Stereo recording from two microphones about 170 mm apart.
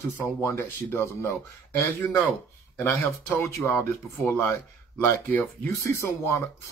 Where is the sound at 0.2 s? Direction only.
15° left (ahead or behind).